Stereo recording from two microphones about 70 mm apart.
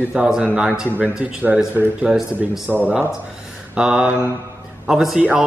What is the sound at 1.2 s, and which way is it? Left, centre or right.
A man's voice, right.